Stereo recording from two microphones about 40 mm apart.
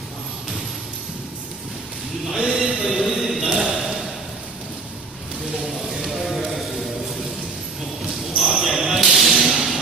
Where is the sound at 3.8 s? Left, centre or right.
Centre.